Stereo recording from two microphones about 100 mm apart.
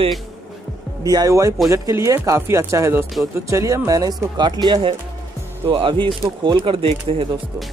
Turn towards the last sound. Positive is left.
turn(degrees=-65)  # may be behind; listen again after turning